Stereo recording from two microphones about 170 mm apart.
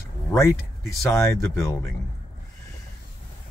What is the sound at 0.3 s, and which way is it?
Speech, 15° left (ahead or behind).